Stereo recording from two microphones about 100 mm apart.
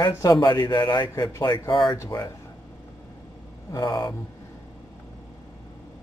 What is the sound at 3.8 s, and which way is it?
Speech, 40° left (ahead or behind).